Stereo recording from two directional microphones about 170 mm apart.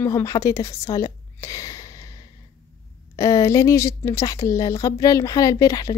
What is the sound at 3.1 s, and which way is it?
Speech, 20° left (ahead or behind).